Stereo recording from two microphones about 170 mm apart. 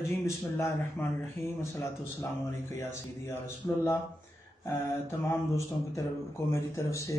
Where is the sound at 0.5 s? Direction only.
15° left (ahead or behind).